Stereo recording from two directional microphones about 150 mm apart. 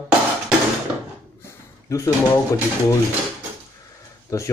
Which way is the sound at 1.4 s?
20° left (ahead or behind).